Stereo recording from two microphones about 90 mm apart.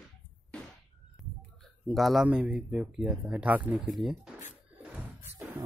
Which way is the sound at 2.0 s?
Centre (ahead or behind).